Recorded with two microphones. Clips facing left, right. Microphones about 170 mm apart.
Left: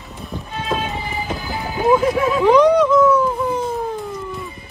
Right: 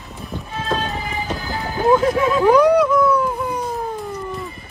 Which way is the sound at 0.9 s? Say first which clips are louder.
Even; 15° left (ahead or behind).